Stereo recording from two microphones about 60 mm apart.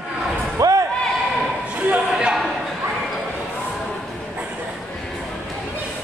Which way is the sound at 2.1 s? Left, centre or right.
Centre.